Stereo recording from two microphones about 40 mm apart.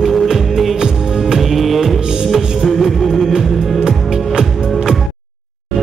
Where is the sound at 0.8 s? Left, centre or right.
Centre.